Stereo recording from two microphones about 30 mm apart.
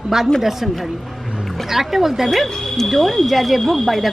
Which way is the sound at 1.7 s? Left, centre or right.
Centre.